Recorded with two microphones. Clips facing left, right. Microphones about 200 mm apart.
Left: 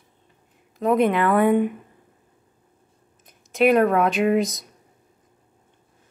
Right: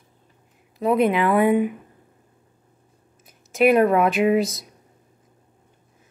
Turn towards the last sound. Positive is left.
turn(degrees=-5)  # may be behind; listen again after turning